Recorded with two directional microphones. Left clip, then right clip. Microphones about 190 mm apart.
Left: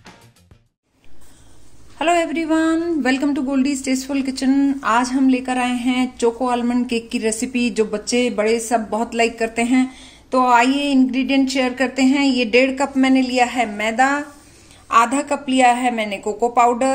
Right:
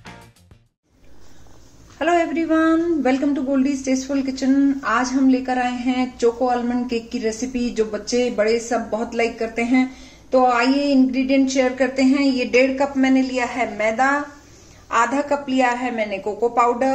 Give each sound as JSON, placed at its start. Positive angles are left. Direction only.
{"t": 2.0, "sound": "a sound", "side_deg": 50}
{"t": 3.8, "sound": "a woman's voice", "side_deg": 55}
{"t": 14.9, "sound": "a woman's voice", "side_deg": 55}